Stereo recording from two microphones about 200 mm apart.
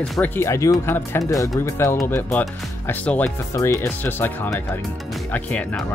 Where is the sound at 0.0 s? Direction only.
5° left (ahead or behind).